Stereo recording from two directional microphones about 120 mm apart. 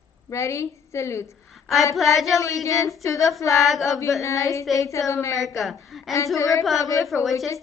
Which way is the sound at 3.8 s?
25° left (ahead or behind).